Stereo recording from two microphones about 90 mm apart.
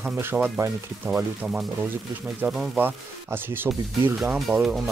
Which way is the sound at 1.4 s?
10° right (ahead or behind).